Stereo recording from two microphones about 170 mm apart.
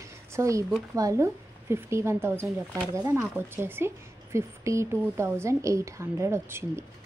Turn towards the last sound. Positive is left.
turn(degrees=-15)  # may be behind; listen again after turning